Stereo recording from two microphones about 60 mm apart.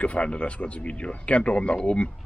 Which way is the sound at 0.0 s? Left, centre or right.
Left.